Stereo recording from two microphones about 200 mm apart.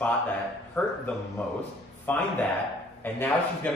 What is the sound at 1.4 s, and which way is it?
Speech, 5° left (ahead or behind).